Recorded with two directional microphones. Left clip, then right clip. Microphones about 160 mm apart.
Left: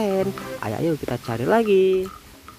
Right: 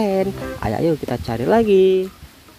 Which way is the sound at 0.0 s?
Centre (ahead or behind).